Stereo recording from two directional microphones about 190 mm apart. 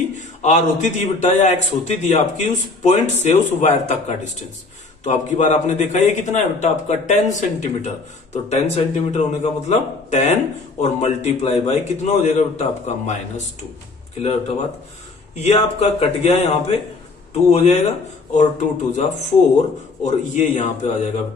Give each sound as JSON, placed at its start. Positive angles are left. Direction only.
{"t": 0.1, "sound": "a man's voice", "side_deg": 40}
{"t": 15.3, "sound": "a man's voice", "side_deg": 35}